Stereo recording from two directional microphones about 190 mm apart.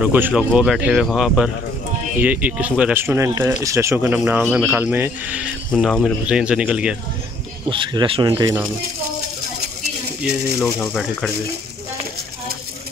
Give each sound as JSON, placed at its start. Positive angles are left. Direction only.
{"t": 0.0, "sound": "speech", "side_deg": -5}
{"t": 5.7, "sound": "speech", "side_deg": 5}
{"t": 7.7, "sound": "speech", "side_deg": -25}
{"t": 10.2, "sound": "speech", "side_deg": 5}